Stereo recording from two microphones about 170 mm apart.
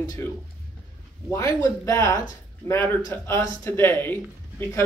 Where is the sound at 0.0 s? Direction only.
20° left (ahead or behind).